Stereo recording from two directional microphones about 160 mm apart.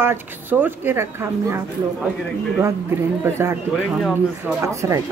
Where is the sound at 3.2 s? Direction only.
15° right (ahead or behind).